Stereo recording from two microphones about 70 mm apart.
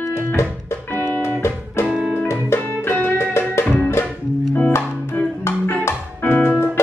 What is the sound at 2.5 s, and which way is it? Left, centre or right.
Music, left.